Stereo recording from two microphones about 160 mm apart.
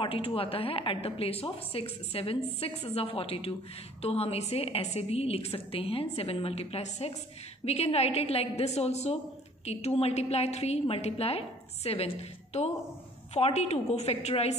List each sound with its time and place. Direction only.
0.0 s a woman's voice: 35° left (ahead or behind)